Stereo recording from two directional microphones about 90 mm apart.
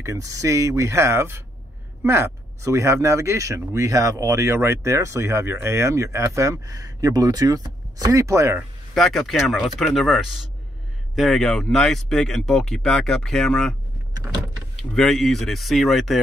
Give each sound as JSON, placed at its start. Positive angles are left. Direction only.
{"t": 0.0, "sound": "speech", "side_deg": -35}
{"t": 8.9, "sound": "speech", "side_deg": 0}
{"t": 14.8, "sound": "speech", "side_deg": 5}